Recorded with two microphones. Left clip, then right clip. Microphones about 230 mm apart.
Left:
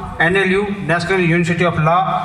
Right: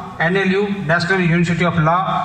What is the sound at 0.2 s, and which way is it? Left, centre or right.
A man's voice, left.